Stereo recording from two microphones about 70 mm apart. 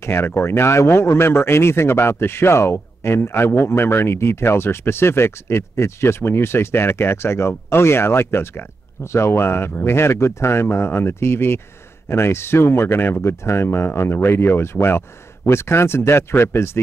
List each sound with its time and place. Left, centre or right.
0.0 s speech: left